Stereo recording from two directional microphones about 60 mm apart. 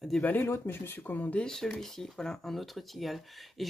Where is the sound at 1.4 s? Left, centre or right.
Centre.